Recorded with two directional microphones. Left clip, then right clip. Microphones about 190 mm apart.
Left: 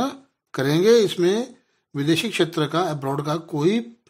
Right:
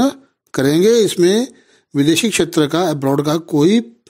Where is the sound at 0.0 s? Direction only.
45° right (ahead or behind).